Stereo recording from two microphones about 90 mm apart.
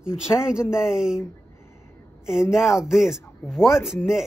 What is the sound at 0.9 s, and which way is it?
Speech, 5° right (ahead or behind).